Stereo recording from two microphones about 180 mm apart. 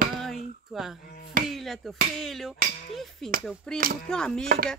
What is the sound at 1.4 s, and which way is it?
Hammer, centre (ahead or behind).